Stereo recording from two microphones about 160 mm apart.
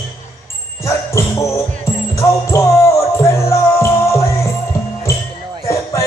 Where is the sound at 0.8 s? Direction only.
20° left (ahead or behind).